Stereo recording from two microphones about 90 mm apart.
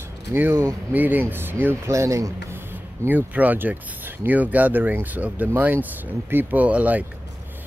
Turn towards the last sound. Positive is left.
turn(degrees=-15)  # may be behind; listen again after turning